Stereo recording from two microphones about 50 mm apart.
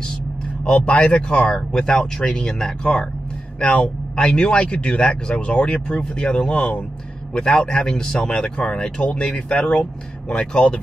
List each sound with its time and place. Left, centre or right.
0.7 s speech: left